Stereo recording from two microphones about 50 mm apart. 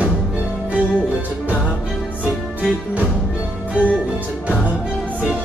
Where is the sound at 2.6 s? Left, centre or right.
Right.